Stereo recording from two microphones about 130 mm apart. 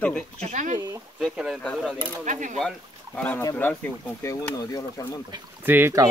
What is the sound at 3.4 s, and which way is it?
Speech, 20° left (ahead or behind).